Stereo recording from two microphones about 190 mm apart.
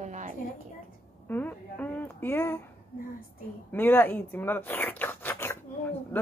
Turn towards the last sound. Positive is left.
turn(degrees=10)  # may be behind; listen again after turning